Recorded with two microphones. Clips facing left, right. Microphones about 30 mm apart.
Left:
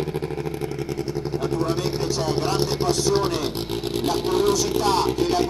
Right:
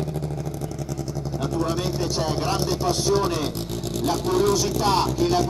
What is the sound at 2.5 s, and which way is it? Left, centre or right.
Vehicle, left.